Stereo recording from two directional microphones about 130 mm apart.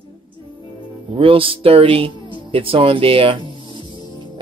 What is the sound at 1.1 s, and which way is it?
Speech, 45° right (ahead or behind).